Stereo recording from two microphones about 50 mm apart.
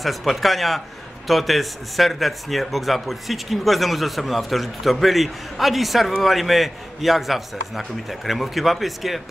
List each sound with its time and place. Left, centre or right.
0.0 s a man's voice: centre